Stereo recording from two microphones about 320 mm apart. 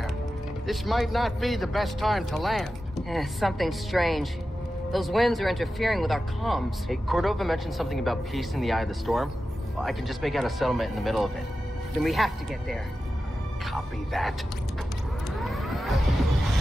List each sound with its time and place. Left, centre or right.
0.7 s speech: centre
15.3 s vehicle: centre